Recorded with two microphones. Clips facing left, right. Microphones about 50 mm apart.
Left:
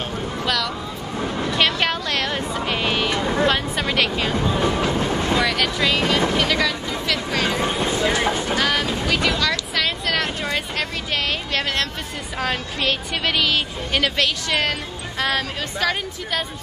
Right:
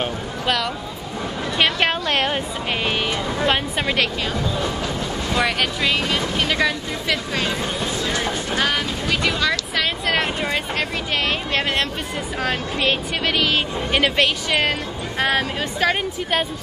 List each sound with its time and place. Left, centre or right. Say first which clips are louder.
1.6 s speech: right 2 dB; right
2.7 s speech: even; centre
4.6 s train: left 4 dB; left
5.4 s speech: right 4 dB; right
5.8 s speech: left 2 dB; centre
7.4 s speech: left 2 dB; left
8.5 s speech: left 1 dB; centre; by 16.4 s right